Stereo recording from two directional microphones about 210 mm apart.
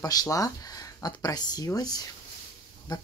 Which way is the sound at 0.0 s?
15° left (ahead or behind).